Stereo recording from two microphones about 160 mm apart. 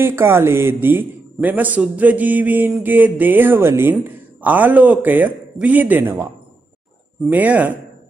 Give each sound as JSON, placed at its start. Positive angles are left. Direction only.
{"t": 0.0, "sound": "speech", "side_deg": -15}
{"t": 7.2, "sound": "speech", "side_deg": -10}